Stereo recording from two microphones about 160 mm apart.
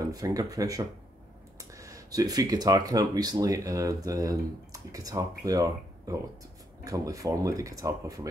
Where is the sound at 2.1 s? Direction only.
25° right (ahead or behind).